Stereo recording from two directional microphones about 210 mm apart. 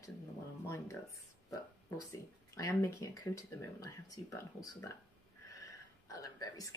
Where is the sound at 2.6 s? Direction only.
15° left (ahead or behind).